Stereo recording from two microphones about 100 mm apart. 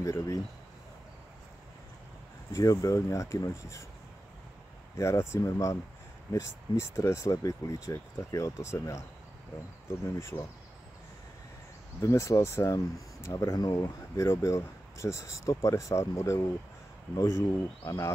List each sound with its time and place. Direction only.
0.0 s speech: 35° left (ahead or behind)
2.5 s speech: 30° left (ahead or behind)
4.9 s speech: 30° left (ahead or behind)
12.0 s speech: 30° left (ahead or behind)